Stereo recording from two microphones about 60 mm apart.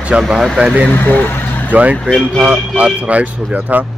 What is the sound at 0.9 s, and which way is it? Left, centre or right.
Speech, left.